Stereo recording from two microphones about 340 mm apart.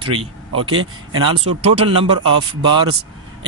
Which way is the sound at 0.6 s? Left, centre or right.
Right.